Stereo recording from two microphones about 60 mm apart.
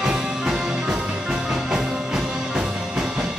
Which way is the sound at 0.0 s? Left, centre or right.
Centre.